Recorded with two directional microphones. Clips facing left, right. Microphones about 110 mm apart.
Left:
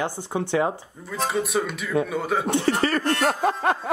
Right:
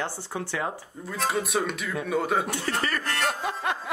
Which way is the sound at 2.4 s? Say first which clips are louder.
Left 7 dB; 25° left (ahead or behind).